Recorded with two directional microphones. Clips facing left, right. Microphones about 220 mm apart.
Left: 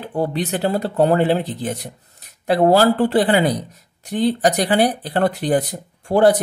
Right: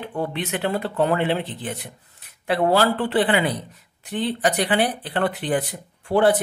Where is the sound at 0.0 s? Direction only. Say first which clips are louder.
Left 5 dB; 35° left (ahead or behind).